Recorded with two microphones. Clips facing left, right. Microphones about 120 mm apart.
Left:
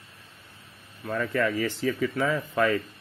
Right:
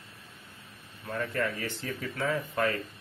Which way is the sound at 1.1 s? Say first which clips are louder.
Left 5 dB; 90° left.